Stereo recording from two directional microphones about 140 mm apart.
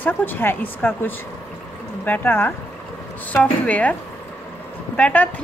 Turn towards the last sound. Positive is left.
turn(degrees=10)  # may be behind; listen again after turning